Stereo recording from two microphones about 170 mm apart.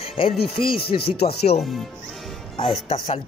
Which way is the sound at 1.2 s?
70° left (ahead or behind).